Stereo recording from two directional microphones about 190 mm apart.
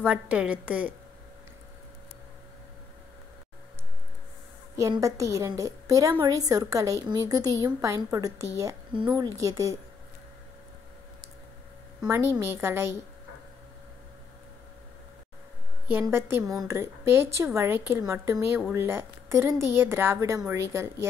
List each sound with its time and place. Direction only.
0.0 s a woman's voice: 5° right (ahead or behind)
4.7 s a woman's voice: 15° right (ahead or behind)
12.0 s a woman's voice: 15° right (ahead or behind)
15.9 s a woman's voice: 10° right (ahead or behind)